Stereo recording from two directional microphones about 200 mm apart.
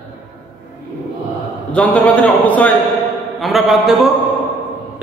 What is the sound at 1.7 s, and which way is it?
A man's voice, 5° left (ahead or behind).